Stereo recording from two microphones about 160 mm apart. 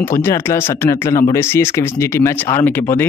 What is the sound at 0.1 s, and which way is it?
A man's voice, 15° left (ahead or behind).